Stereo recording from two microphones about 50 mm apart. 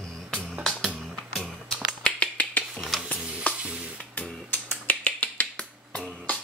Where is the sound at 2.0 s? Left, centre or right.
Left.